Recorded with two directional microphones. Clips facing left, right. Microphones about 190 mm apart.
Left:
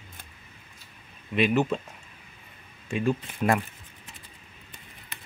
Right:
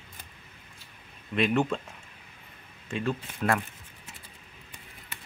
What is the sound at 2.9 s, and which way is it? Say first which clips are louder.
Speech: left 4 dB; 15° left (ahead or behind).